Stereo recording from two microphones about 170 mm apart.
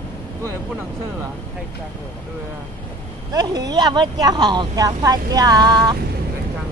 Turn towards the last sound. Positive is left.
turn(degrees=-25)  # may be behind; listen again after turning